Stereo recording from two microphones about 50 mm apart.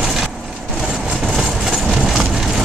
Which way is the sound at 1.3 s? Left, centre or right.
Centre.